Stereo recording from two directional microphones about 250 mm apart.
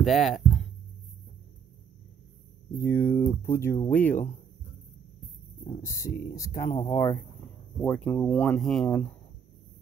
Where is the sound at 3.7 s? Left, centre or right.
Left.